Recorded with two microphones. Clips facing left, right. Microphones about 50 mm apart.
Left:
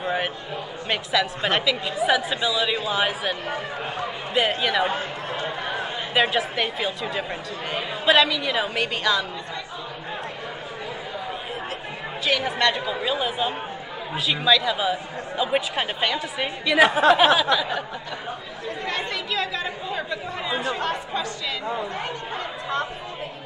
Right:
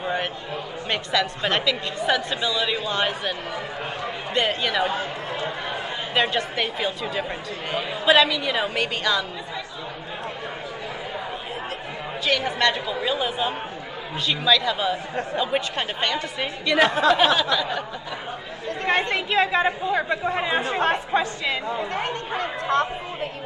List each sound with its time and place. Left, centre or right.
0.8 s a woman's voice: centre
4.8 s speech: left
6.3 s a woman's voice: centre
12.3 s a woman's voice: centre
17.1 s a sound: centre
18.9 s a woman's voice: right
22.4 s speech: right